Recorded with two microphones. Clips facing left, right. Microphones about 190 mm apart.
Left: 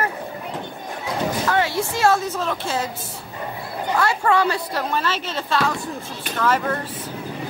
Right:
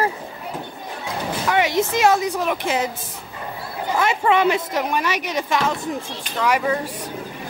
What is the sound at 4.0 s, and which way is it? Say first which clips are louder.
Speech: right 2 dB; 20° right (ahead or behind).